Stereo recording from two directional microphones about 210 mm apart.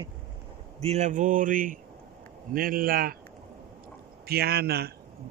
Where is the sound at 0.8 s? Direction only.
35° right (ahead or behind).